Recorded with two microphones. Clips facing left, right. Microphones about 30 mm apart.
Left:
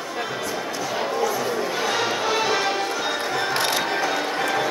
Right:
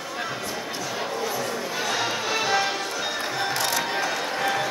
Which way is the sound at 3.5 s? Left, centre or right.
Left.